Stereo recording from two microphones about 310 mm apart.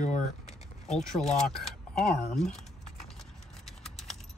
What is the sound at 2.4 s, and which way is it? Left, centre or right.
Typing, centre.